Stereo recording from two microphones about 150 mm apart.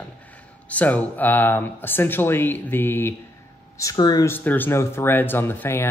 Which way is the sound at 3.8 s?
25° left (ahead or behind).